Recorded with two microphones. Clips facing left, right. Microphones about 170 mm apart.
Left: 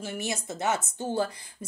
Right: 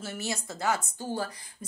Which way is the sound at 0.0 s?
15° left (ahead or behind).